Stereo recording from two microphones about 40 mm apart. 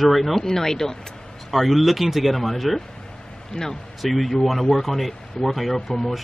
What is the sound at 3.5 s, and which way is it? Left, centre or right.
Speech, centre.